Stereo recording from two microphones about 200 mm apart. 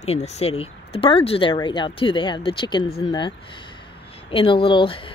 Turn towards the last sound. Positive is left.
turn(degrees=25)  # may be behind; listen again after turning